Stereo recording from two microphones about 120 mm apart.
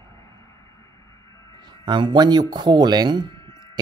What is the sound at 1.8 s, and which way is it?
Speech, 40° right (ahead or behind).